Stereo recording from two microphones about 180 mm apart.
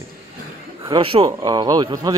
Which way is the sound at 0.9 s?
30° right (ahead or behind).